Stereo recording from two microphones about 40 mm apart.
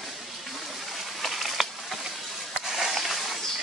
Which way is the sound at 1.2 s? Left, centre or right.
Centre.